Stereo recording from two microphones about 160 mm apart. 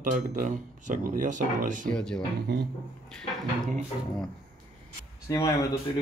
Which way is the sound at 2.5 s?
90° right.